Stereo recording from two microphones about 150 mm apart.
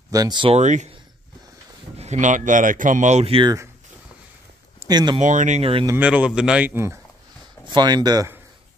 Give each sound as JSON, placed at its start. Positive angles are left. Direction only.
{"t": 0.1, "sound": "speech", "side_deg": -25}
{"t": 0.5, "sound": "speech", "side_deg": -50}
{"t": 2.0, "sound": "speech", "side_deg": -50}
{"t": 4.7, "sound": "speech", "side_deg": -25}
{"t": 5.2, "sound": "speech", "side_deg": -55}
{"t": 5.9, "sound": "a man's voice", "side_deg": -10}
{"t": 7.6, "sound": "speech", "side_deg": -30}